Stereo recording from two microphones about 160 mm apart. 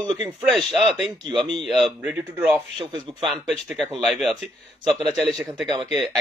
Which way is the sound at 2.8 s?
30° right (ahead or behind).